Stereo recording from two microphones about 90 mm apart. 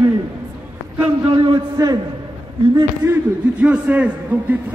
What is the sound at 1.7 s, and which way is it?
Speech, 45° right (ahead or behind).